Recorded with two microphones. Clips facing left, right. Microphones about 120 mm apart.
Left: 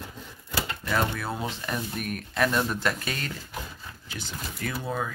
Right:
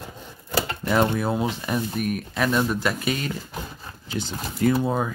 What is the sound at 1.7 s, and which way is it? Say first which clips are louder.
Speech: right 6 dB; 5° right (ahead or behind).